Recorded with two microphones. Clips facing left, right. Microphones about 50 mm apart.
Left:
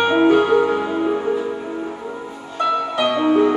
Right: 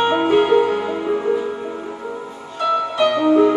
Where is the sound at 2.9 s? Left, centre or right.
Centre.